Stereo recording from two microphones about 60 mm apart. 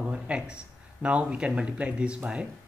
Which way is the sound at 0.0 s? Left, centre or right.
Centre.